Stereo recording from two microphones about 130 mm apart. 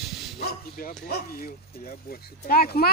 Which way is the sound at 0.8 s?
90° left.